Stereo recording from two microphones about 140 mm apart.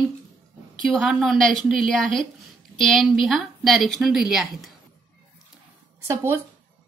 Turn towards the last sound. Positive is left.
turn(degrees=-15)  # may be behind; listen again after turning